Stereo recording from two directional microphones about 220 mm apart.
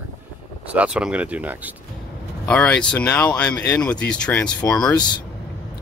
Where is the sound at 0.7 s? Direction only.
5° right (ahead or behind).